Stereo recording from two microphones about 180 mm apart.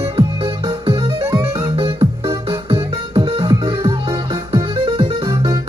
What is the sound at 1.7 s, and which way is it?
Music, 25° right (ahead or behind).